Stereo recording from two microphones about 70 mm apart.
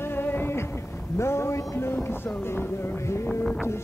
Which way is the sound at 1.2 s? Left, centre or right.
Left.